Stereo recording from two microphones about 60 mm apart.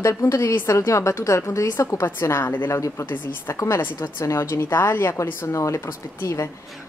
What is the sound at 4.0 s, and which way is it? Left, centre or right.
A woman's voice, left.